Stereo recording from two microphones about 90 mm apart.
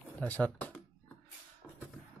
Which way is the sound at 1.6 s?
15° left (ahead or behind).